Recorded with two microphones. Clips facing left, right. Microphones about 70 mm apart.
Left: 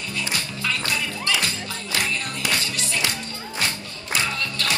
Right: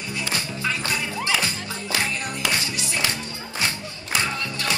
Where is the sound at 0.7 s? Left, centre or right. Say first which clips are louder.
Even; right.